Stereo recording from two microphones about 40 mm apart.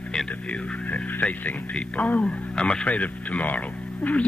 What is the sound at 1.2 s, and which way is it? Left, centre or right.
Speech, left.